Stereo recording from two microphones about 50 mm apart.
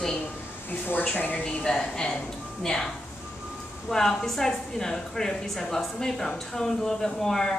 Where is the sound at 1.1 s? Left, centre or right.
Left.